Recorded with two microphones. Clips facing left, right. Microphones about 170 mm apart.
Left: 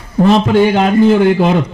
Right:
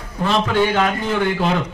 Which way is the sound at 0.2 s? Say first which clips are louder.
Left 8 dB; 35° left (ahead or behind).